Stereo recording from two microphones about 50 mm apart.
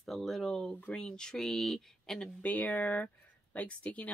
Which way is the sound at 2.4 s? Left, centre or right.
Left.